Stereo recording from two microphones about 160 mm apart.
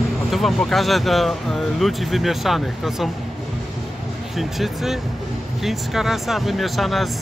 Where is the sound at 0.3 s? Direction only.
Centre (ahead or behind).